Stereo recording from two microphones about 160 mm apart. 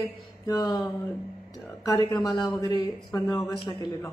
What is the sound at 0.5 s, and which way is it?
Speech, 25° left (ahead or behind).